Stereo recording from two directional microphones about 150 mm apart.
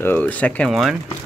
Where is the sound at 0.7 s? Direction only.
Centre (ahead or behind).